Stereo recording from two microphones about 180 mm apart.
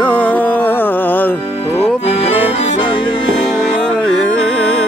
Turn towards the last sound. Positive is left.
turn(degrees=35)  # may be behind; listen again after turning